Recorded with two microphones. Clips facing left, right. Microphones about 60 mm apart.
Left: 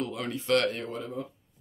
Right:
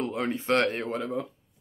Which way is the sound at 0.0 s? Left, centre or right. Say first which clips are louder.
Right 4 dB; right.